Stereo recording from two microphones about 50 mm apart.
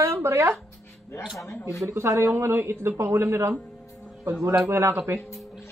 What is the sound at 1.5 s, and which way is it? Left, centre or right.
Speech, left.